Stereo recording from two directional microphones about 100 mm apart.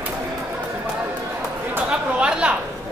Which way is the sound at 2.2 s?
10° right (ahead or behind).